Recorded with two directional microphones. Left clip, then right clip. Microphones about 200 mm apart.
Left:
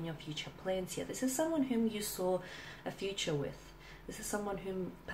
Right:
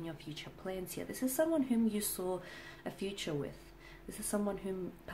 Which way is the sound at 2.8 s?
35° right (ahead or behind).